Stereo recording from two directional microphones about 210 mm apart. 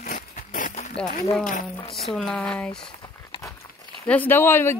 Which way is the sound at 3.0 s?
20° left (ahead or behind).